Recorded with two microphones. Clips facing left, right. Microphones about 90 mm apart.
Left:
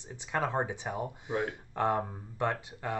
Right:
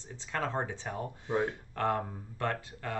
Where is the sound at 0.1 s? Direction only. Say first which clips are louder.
Left 2 dB; 15° left (ahead or behind).